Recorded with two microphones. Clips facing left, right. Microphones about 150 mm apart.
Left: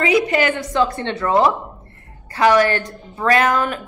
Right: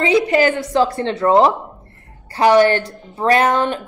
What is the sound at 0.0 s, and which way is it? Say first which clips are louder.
Speech: right 2 dB; 25° right (ahead or behind).